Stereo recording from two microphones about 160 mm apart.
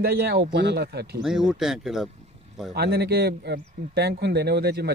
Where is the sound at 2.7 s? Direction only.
85° right.